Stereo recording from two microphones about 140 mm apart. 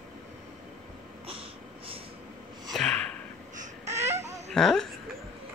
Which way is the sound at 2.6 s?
Centre (ahead or behind).